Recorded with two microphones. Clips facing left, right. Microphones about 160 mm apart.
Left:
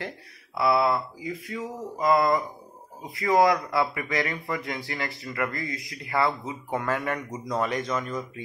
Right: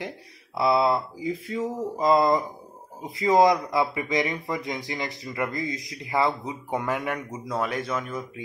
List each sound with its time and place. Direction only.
0.6 s speech: 25° right (ahead or behind); by 8.3 s 10° right (ahead or behind)